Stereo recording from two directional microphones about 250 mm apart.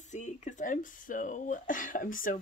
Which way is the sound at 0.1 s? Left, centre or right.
Left.